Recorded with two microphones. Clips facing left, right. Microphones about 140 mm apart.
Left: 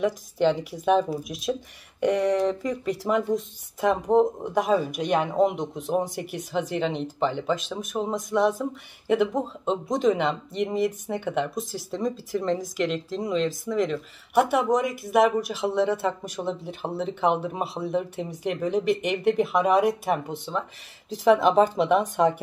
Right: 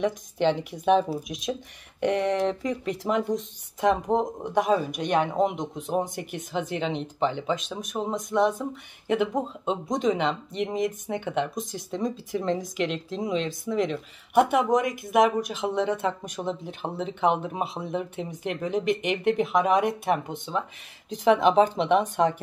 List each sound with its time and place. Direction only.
0.0 s speech: centre (ahead or behind)
6.0 s speech: 40° left (ahead or behind)
6.5 s speech: centre (ahead or behind)